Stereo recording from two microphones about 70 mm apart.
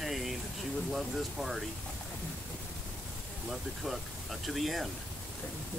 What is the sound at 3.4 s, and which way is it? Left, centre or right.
Speech, centre.